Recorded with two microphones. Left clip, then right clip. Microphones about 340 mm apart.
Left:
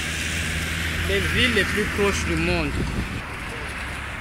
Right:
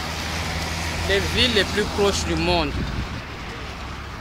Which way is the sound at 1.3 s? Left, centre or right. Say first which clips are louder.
Left 1 dB; right.